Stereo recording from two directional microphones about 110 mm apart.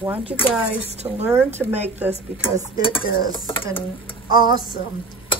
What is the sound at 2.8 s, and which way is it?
Dishes, 50° left (ahead or behind).